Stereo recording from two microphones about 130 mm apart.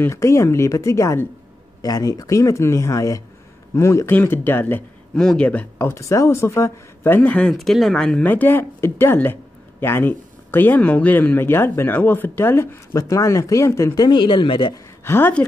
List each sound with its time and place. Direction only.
0.0 s speech: 20° left (ahead or behind)
14.0 s speech: 40° left (ahead or behind)
15.0 s speech: 15° left (ahead or behind)